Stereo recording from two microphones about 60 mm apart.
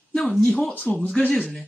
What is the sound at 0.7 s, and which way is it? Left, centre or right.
Speech, left.